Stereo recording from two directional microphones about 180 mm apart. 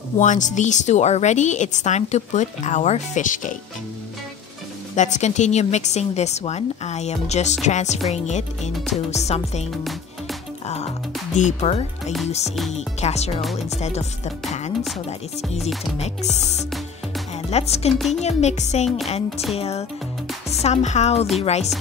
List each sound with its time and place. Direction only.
0.2 s a woman's voice: 45° left (ahead or behind)
4.9 s a woman's voice: 40° left (ahead or behind)
11.3 s a woman's voice: 40° left (ahead or behind)
16.0 s a woman's voice: 40° left (ahead or behind)